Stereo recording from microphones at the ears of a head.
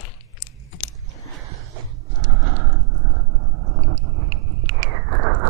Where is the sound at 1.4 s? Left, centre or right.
Right.